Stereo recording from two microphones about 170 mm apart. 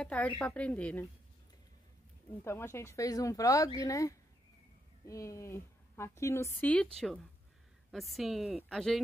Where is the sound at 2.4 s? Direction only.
15° left (ahead or behind).